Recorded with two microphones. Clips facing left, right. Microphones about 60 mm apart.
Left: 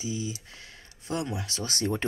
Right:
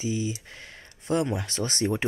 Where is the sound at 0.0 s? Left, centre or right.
Right.